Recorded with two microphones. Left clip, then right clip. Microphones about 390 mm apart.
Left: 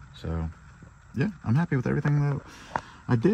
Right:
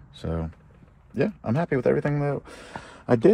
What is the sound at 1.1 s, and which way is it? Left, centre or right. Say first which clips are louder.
Speech: right 5 dB; centre.